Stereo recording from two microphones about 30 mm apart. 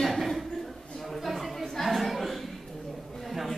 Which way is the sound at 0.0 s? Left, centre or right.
Centre.